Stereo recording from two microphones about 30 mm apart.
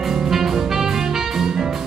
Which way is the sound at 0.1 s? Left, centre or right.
Centre.